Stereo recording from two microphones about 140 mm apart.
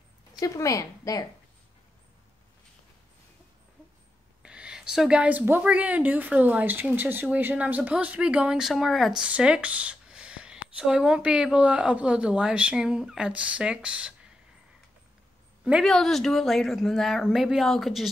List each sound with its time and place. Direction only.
0.4 s a woman's voice: 25° left (ahead or behind)
4.4 s a woman's voice: 5° right (ahead or behind)
15.6 s a woman's voice: centre (ahead or behind)